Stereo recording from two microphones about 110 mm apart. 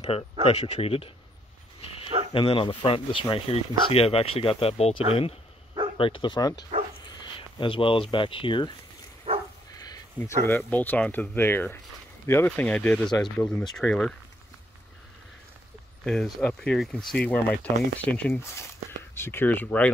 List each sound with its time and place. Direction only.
0.0 s speech: 75° left (ahead or behind)
2.3 s speech: 50° left (ahead or behind)
9.3 s dog: 65° right (ahead or behind)
10.1 s speech: 20° left (ahead or behind); by 14.1 s 5° left (ahead or behind)
16.0 s speech: centre (ahead or behind)